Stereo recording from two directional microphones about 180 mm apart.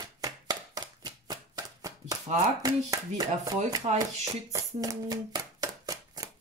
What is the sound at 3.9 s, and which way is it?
Hands, 20° right (ahead or behind).